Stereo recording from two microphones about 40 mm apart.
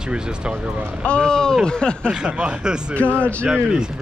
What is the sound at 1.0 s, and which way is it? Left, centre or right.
Speech, left.